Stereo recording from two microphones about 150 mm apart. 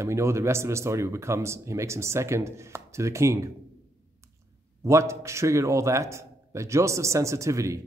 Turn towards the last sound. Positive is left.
turn(degrees=-20)  # may be behind; listen again after turning